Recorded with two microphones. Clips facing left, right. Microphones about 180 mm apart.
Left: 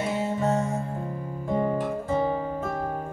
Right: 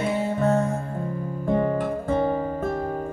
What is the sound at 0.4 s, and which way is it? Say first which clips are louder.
Music: right 4 dB; 60° right (ahead or behind).